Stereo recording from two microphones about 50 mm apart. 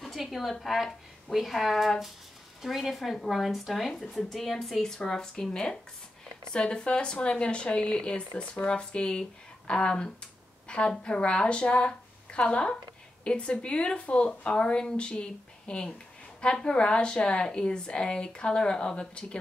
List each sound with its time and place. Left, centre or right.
0.0 s a woman's voice: centre